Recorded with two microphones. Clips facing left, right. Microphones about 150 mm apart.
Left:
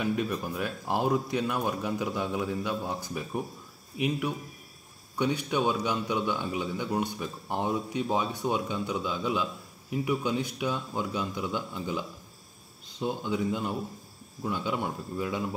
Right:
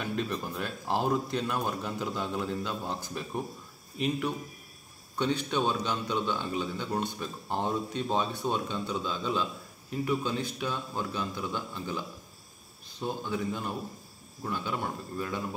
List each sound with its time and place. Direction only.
0.0 s a man's voice: 10° left (ahead or behind)
5.1 s a man's voice: 10° left (ahead or behind)